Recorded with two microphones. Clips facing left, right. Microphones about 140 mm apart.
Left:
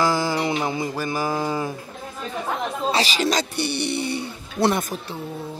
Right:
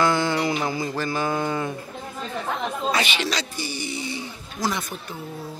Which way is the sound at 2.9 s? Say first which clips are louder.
Left 4 dB; 35° left (ahead or behind).